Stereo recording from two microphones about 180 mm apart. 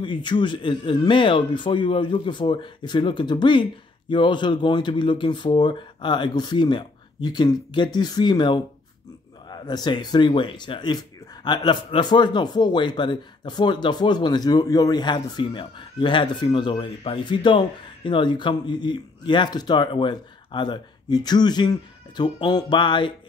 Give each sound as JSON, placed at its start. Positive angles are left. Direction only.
{"t": 0.0, "sound": "speech", "side_deg": 25}